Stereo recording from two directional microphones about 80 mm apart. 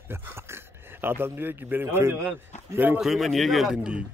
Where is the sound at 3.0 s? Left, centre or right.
Centre.